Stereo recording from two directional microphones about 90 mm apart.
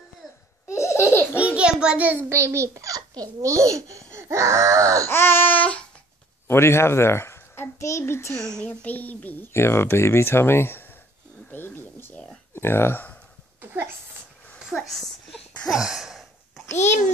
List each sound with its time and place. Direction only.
0.7 s laughter: 30° left (ahead or behind)
1.4 s a child's voice: 10° right (ahead or behind)
2.2 s a child's voice: 30° right (ahead or behind)
5.0 s a child's voice: 25° left (ahead or behind)
6.4 s a child's voice: 30° left (ahead or behind)
8.4 s a child's voice: 5° left (ahead or behind)
8.6 s a child's voice: 20° left (ahead or behind)
13.6 s a sound: 25° right (ahead or behind)
14.6 s a sound: centre (ahead or behind)